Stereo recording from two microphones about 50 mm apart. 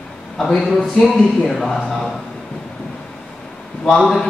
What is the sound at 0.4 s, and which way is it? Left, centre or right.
Speech, centre.